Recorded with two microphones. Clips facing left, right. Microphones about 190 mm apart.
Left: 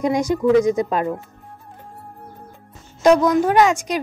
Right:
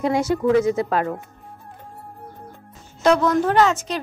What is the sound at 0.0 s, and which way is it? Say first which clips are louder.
A woman's voice: left 1 dB; 15° left (ahead or behind).